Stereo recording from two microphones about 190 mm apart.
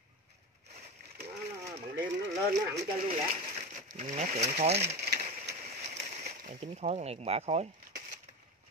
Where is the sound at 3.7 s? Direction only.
40° right (ahead or behind).